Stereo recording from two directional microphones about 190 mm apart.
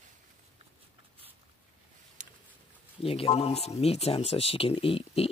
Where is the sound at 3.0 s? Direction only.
30° left (ahead or behind).